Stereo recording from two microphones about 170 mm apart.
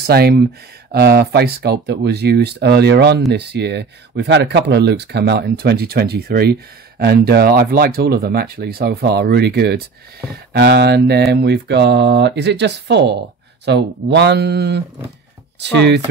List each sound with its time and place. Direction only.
0.0 s speech: 70° right (ahead or behind)
10.5 s mantra: 75° right (ahead or behind)
15.6 s speech: 90° right